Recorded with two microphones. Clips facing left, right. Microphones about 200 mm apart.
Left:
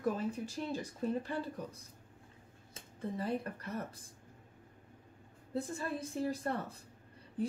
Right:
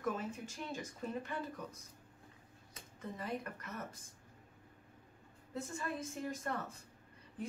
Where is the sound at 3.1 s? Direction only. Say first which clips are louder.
Left 5 dB; 30° left (ahead or behind).